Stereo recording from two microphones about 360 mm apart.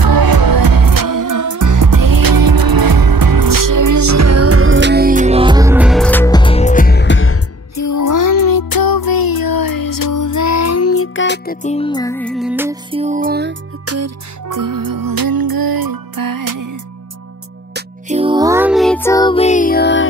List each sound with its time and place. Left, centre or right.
0.0 s music: right; by 13.0 s centre
13.0 s music: right
13.8 s music: right
17.7 s music: centre; by 20.1 s left